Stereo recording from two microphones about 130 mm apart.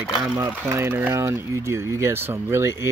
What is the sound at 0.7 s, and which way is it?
Speech, 20° right (ahead or behind).